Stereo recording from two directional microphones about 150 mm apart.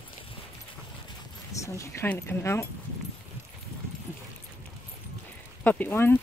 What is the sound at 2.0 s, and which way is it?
Speech, 15° left (ahead or behind).